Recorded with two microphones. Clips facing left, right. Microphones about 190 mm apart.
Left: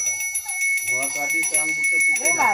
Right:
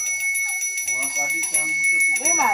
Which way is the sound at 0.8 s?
60° left (ahead or behind).